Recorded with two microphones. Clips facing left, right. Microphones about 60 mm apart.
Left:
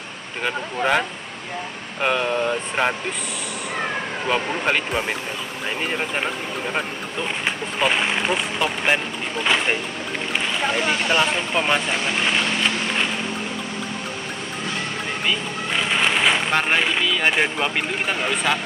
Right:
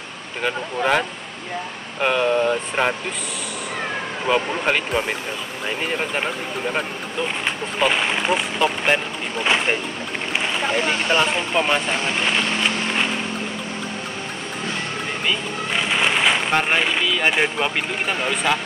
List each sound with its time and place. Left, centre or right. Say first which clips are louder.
0.4 s speech: right 1 dB; centre
4.3 s speech: right 2 dB; centre
7.4 s speech: even; centre
11.1 s speech: right 1 dB; centre
11.5 s speech: right 1 dB; centre
15.2 s speech: even; centre